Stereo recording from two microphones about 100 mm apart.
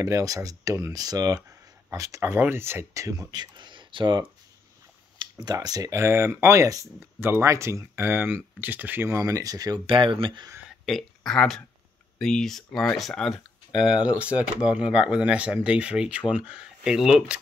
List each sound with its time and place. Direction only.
0.0 s speech: 35° right (ahead or behind)
9.8 s speech: 60° right (ahead or behind)
10.9 s speech: 5° left (ahead or behind)